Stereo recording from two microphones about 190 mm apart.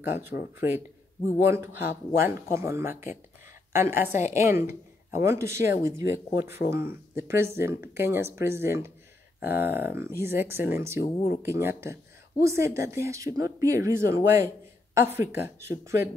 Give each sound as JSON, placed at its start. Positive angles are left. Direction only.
{"t": 0.0, "sound": "speech", "side_deg": -10}
{"t": 4.1, "sound": "a woman's voice", "side_deg": 40}
{"t": 4.4, "sound": "speech", "side_deg": -15}